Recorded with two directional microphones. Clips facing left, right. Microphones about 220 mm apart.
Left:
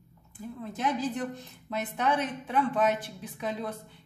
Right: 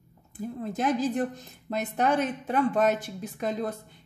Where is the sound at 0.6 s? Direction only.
45° right (ahead or behind).